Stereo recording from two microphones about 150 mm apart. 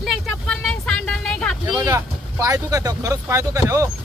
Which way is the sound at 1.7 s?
30° right (ahead or behind).